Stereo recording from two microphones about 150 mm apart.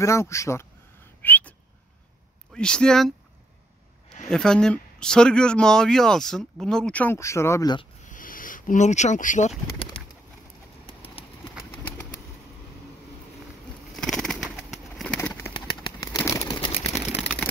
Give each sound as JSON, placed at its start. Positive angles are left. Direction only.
{"t": 0.0, "sound": "speech", "side_deg": 20}
{"t": 1.2, "sound": "whistling", "side_deg": 10}
{"t": 2.5, "sound": "speech", "side_deg": 5}
{"t": 4.3, "sound": "speech", "side_deg": 5}
{"t": 8.0, "sound": "a sound", "side_deg": 65}
{"t": 9.8, "sound": "bird", "side_deg": 35}
{"t": 10.9, "sound": "clip-clop", "side_deg": 40}
{"t": 13.9, "sound": "bird", "side_deg": 5}
{"t": 15.1, "sound": "bird", "side_deg": 15}
{"t": 15.5, "sound": "a sound", "side_deg": 30}
{"t": 16.5, "sound": "a sound", "side_deg": 30}